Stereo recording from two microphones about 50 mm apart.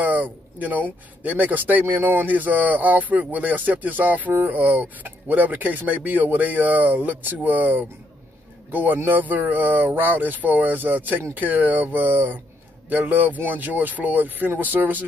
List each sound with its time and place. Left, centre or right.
0.0 s speech: right